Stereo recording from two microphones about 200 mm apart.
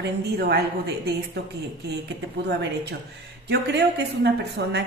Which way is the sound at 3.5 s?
55° right (ahead or behind).